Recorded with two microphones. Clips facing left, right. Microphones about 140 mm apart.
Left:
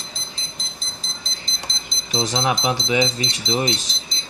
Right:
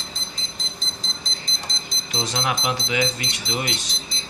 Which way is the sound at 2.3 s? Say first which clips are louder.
Left 3 dB; 25° left (ahead or behind).